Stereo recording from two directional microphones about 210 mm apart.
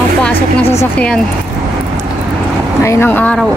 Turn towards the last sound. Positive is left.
turn(degrees=10)  # may be behind; listen again after turning